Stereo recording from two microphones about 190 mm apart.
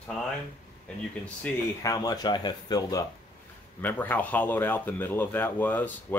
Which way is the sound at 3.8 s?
10° left (ahead or behind).